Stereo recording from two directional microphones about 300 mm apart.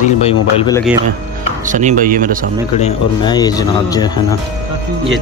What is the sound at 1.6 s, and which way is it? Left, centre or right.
Speech, right.